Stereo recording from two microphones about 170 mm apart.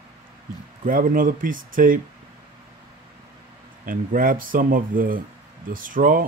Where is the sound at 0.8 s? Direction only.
55° right (ahead or behind).